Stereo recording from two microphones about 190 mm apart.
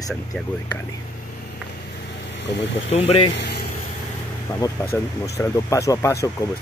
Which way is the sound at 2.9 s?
30° left (ahead or behind).